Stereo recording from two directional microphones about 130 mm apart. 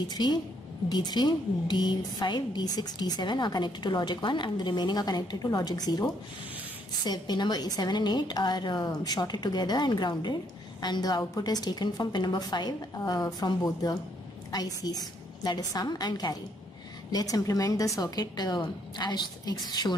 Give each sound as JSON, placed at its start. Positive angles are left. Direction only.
{"t": 0.0, "sound": "a woman's voice", "side_deg": 35}
{"t": 7.1, "sound": "a woman's voice", "side_deg": 35}